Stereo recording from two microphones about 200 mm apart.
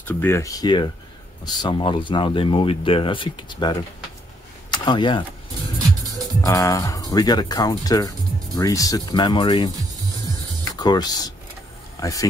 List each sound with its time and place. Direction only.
0.2 s speech: 15° left (ahead or behind)
6.4 s speech: 15° left (ahead or behind)
10.8 s speech: 20° left (ahead or behind)